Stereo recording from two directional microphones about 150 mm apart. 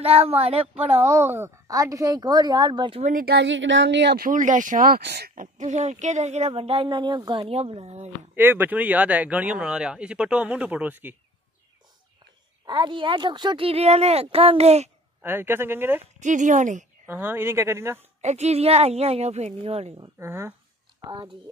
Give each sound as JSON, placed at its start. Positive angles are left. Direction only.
{"t": 0.0, "sound": "speech", "side_deg": -40}
{"t": 1.0, "sound": "a woman's voice", "side_deg": -15}
{"t": 3.0, "sound": "speech", "side_deg": -65}
{"t": 7.4, "sound": "speech", "side_deg": -40}
{"t": 8.4, "sound": "speech", "side_deg": -15}
{"t": 12.6, "sound": "speech", "side_deg": -30}
{"t": 15.2, "sound": "speech", "side_deg": -15}
{"t": 16.0, "sound": "speech", "side_deg": -55}
{"t": 17.0, "sound": "speech", "side_deg": -15}
{"t": 18.2, "sound": "speech", "side_deg": -45}
{"t": 20.2, "sound": "speech", "side_deg": -15}
{"t": 21.0, "sound": "speech", "side_deg": -30}